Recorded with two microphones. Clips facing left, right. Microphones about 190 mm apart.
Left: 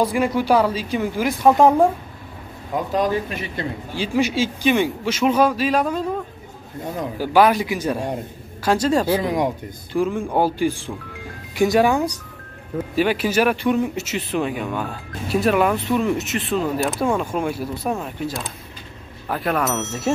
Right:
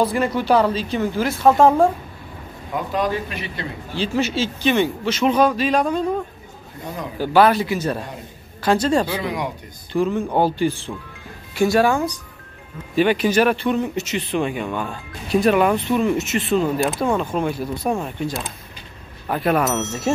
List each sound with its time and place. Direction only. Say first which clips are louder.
0.0 s speech: even; 10° left (ahead or behind)
2.9 s speech: left 2 dB; 40° left (ahead or behind)
3.9 s speech: left 1 dB; 10° left (ahead or behind)
7.2 s speech: right 1 dB; 10° left (ahead or behind)
9.2 s speech: left 4 dB; 45° left (ahead or behind)
9.9 s speech: right 1 dB; 10° left (ahead or behind)
12.9 s speech: right 3 dB; 5° left (ahead or behind)